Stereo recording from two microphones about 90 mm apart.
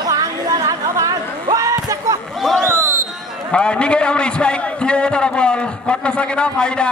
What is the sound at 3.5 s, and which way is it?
A man's voice, 10° left (ahead or behind).